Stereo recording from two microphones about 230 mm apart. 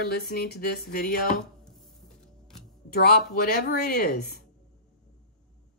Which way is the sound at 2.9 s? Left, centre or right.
Left.